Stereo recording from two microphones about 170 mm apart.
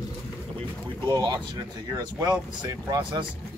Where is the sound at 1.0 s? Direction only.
25° right (ahead or behind).